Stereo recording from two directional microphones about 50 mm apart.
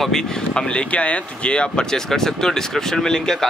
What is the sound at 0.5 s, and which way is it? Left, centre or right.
Speech, left.